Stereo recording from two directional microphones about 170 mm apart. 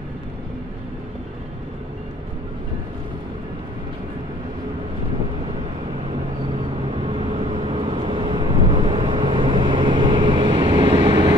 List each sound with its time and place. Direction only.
6.9 s vehicle: 30° right (ahead or behind)